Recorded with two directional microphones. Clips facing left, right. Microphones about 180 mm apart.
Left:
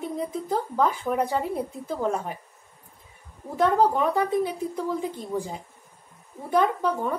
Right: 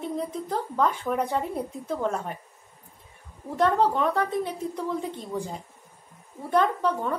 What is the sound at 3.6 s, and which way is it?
A woman's voice, 5° left (ahead or behind).